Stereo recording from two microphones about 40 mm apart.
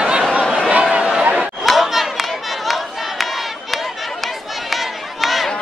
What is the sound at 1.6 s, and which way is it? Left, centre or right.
Crowd, centre.